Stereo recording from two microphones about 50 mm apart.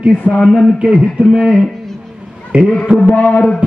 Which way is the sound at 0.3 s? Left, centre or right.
Centre.